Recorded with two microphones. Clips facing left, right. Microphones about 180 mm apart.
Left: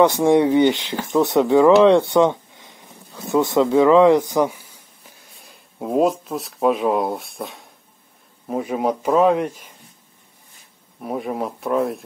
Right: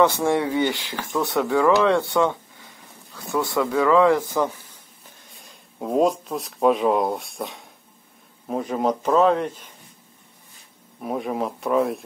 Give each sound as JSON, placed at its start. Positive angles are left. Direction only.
{"t": 0.0, "sound": "a man's voice", "side_deg": 15}
{"t": 11.0, "sound": "speech", "side_deg": 0}